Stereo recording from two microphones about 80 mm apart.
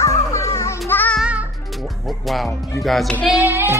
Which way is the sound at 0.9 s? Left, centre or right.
Left.